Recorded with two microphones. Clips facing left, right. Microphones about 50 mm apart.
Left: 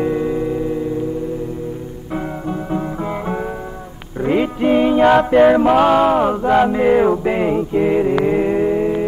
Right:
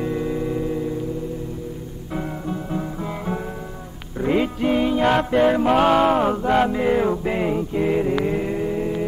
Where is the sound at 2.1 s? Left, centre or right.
Centre.